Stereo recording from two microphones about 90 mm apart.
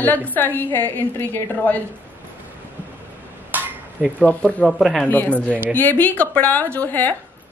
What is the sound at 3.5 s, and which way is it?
Dishes, 20° right (ahead or behind).